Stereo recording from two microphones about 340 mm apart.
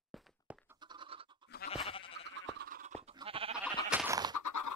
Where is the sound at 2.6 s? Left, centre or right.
Right.